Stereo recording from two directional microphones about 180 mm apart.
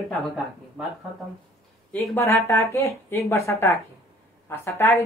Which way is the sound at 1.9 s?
15° left (ahead or behind).